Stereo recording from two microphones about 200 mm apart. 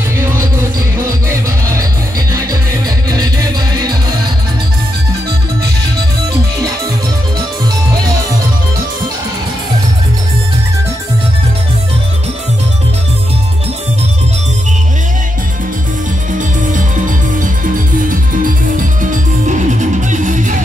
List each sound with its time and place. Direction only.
0.9 s music: 15° right (ahead or behind)
18.4 s music: 40° right (ahead or behind)